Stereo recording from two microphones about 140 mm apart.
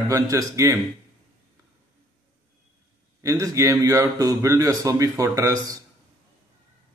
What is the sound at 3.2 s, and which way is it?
A man's voice, 20° right (ahead or behind).